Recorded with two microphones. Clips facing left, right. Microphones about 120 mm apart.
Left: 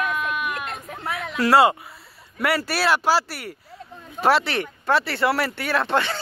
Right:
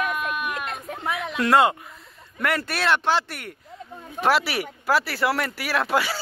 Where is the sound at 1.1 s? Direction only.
Centre (ahead or behind).